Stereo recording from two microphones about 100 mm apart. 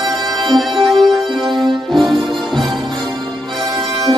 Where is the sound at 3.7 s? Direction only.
45° right (ahead or behind).